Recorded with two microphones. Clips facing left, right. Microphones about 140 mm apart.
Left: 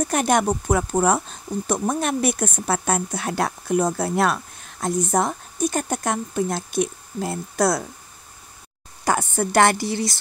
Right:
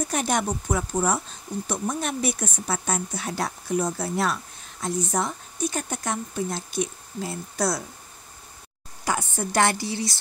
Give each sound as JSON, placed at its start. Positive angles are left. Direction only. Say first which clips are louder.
{"t": 0.1, "sound": "speech", "louder": "left 7 dB", "side_deg": 60}
{"t": 9.0, "sound": "speech", "louder": "left 5 dB", "side_deg": 60}